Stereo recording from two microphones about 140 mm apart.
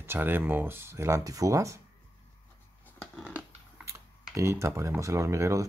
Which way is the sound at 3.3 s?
5° right (ahead or behind).